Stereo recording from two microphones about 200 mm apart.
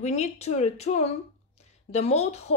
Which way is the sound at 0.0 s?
35° left (ahead or behind).